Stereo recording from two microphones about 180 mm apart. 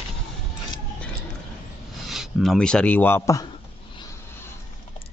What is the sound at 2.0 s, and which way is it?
Speech, centre (ahead or behind).